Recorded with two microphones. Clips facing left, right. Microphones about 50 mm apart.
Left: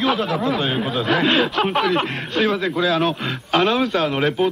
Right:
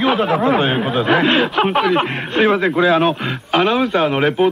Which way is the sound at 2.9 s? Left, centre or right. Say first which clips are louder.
Right 5 dB; centre.